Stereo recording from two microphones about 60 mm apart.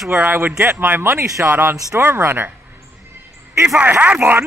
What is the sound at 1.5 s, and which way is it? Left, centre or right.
Speech, right.